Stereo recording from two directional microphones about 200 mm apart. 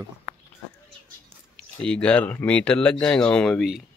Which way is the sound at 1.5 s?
5° left (ahead or behind).